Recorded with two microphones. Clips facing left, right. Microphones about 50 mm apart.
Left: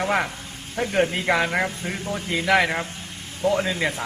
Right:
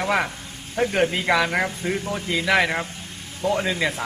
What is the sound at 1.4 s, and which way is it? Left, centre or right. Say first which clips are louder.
Speech: right 1 dB; centre.